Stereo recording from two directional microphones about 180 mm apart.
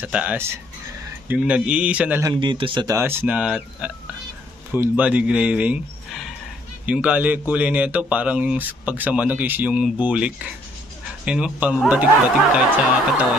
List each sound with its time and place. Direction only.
0.0 s speech: 5° right (ahead or behind)
2.4 s speech: 30° right (ahead or behind)
3.0 s speech: 10° right (ahead or behind)
6.9 s speech: 5° right (ahead or behind)